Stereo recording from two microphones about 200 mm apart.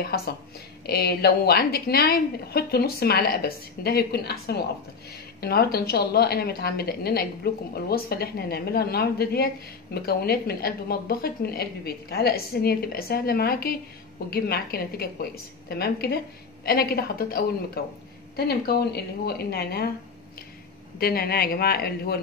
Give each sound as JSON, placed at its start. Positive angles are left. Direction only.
{"t": 0.1, "sound": "a woman's voice", "side_deg": 50}
{"t": 21.0, "sound": "a woman's voice", "side_deg": 50}